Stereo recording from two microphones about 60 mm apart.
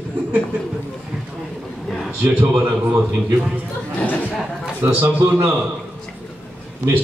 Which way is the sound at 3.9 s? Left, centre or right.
Left.